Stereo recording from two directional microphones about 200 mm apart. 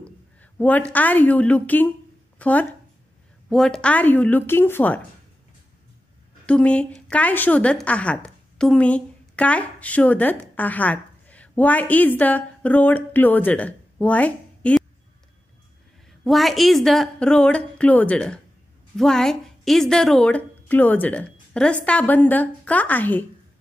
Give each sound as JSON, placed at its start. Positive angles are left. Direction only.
{"t": 0.0, "sound": "a woman's voice", "side_deg": 5}
{"t": 2.3, "sound": "a sound", "side_deg": 5}
{"t": 3.4, "sound": "a woman's voice", "side_deg": 0}
{"t": 6.4, "sound": "a woman's voice", "side_deg": 5}
{"t": 16.1, "sound": "a woman's voice", "side_deg": 0}